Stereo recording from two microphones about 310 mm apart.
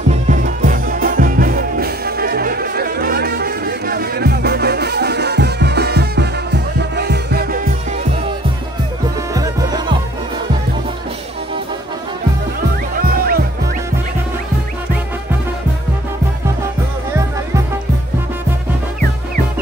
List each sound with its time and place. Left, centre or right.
0.1 s music: right
9.3 s music: centre